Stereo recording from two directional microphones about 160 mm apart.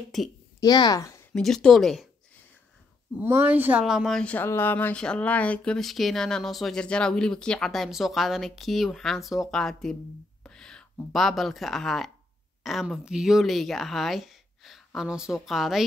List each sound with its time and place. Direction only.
0.6 s speech: 25° left (ahead or behind)
1.3 s speech: 5° left (ahead or behind)
3.2 s speech: 15° right (ahead or behind); by 9.9 s centre (ahead or behind)
10.4 s whispering: 5° left (ahead or behind)
11.1 s speech: centre (ahead or behind)